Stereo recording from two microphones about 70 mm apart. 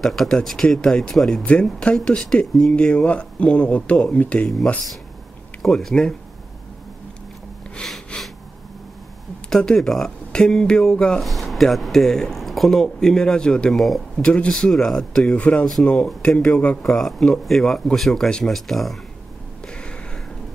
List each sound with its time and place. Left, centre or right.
0.0 s speech: centre
1.4 s speech: centre
5.6 s speech: centre
7.7 s a sound: centre
9.5 s speech: centre
14.2 s speech: centre
14.5 s speech: centre
16.8 s speech: centre
19.7 s a sound: centre